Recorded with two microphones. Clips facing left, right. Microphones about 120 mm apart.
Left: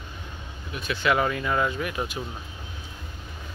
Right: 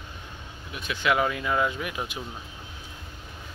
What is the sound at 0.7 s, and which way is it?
Speech, 15° right (ahead or behind).